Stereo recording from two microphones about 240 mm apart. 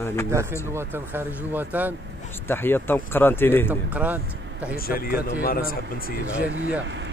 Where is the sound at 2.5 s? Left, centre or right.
Centre.